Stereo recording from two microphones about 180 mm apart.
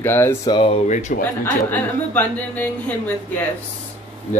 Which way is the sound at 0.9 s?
40° left (ahead or behind).